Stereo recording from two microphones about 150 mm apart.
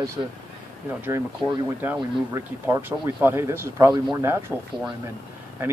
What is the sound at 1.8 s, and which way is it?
Speech, 15° right (ahead or behind).